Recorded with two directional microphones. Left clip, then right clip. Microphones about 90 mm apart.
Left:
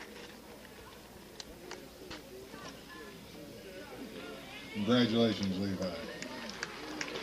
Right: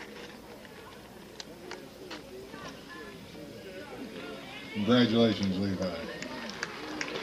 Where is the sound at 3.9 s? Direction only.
40° left (ahead or behind).